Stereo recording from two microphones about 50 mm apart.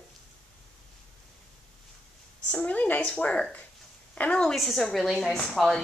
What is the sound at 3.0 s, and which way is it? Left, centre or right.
A woman's voice, left.